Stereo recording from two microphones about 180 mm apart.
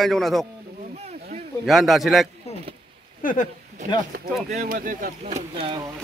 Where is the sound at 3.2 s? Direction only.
45° left (ahead or behind).